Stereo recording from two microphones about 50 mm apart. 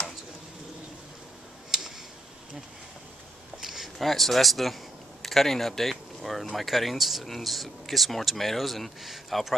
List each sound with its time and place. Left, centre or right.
1.7 s tick-tock: centre
3.5 s speech: centre
5.2 s a sound: centre
6.5 s speech: centre